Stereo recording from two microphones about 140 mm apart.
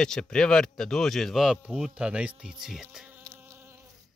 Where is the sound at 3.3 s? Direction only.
15° right (ahead or behind).